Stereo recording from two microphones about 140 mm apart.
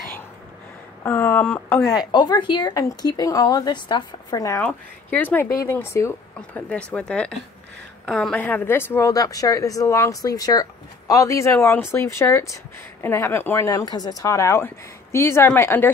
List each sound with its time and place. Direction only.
1.0 s speech: 15° left (ahead or behind)
1.9 s a woman's voice: 30° left (ahead or behind)
4.6 s a woman's voice: 10° left (ahead or behind)